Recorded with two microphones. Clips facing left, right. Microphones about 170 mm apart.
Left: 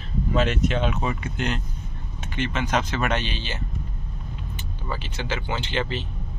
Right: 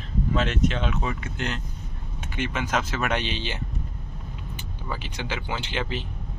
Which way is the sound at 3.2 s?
20° right (ahead or behind).